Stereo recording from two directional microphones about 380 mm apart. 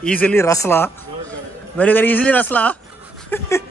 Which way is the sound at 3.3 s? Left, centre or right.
Centre.